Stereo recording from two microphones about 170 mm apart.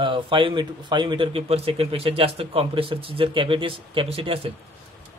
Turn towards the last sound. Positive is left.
turn(degrees=-35)  # may be behind; listen again after turning